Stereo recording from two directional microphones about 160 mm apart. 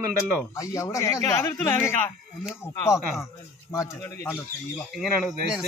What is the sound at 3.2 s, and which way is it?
Speech, 15° left (ahead or behind).